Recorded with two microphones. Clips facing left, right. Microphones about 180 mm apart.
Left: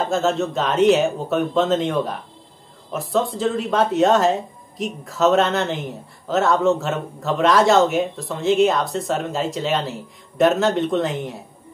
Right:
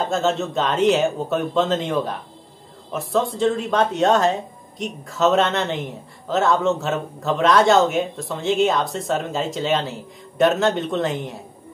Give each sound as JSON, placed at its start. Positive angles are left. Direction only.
{"t": 0.0, "sound": "speech", "side_deg": 0}